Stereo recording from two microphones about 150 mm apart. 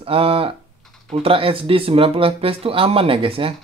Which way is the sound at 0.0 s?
40° right (ahead or behind).